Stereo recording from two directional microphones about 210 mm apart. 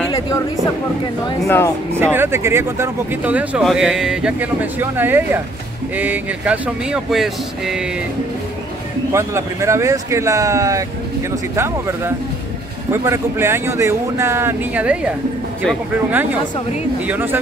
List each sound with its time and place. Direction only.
1.4 s speech: 10° left (ahead or behind)
2.0 s speech: 10° right (ahead or behind)
9.1 s speech: 15° right (ahead or behind)